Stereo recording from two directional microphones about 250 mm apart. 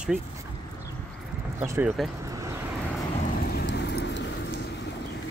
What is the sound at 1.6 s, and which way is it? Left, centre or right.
Speech, centre.